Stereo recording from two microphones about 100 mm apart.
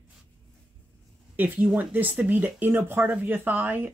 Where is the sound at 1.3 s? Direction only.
20° right (ahead or behind).